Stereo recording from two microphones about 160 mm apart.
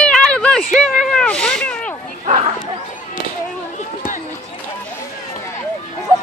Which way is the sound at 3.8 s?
55° left (ahead or behind).